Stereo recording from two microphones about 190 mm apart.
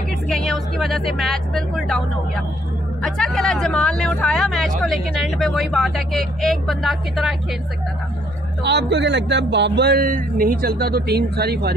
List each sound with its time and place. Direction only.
0.3 s speech: centre (ahead or behind)
8.6 s speech: 65° right (ahead or behind)